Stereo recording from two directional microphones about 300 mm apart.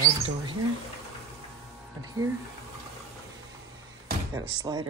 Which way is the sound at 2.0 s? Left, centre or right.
Centre.